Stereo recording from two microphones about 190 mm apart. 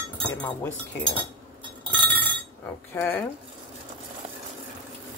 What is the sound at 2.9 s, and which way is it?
Speech, 10° left (ahead or behind).